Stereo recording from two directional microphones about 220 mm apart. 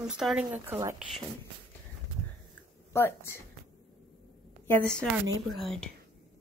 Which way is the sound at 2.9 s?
10° left (ahead or behind).